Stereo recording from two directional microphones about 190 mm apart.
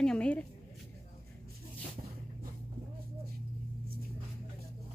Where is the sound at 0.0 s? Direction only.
5° left (ahead or behind).